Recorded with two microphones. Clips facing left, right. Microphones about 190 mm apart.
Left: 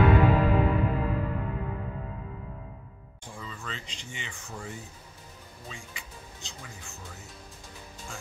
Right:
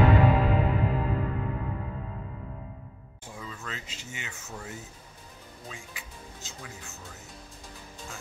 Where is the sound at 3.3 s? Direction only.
5° right (ahead or behind).